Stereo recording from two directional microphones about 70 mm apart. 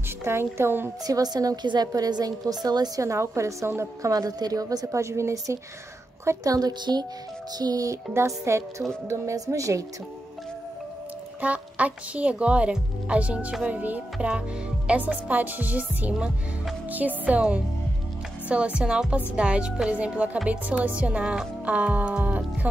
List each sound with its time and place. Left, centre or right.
0.2 s a woman's voice: right
1.0 s a woman's voice: right
3.0 s a woman's voice: right
4.1 s a woman's voice: right
6.2 s a woman's voice: right
7.5 s a woman's voice: right
8.3 s a woman's voice: right
11.4 s speech: centre